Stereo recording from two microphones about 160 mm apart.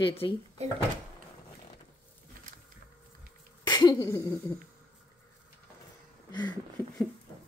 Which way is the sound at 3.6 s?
25° left (ahead or behind).